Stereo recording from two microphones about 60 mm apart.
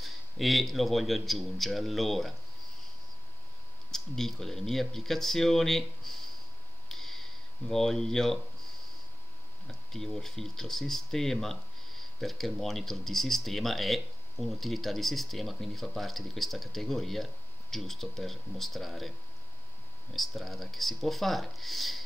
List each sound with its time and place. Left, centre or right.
0.0 s speech: centre
3.9 s speech: centre
6.9 s a sound: centre
9.7 s speech: centre